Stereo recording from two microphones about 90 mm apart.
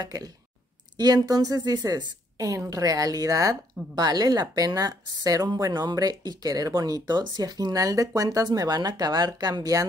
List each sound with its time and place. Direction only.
0.0 s a woman's voice: 45° right (ahead or behind)